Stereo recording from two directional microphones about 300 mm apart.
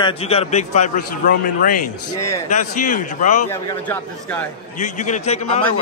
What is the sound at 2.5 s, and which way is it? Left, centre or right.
Speech, left.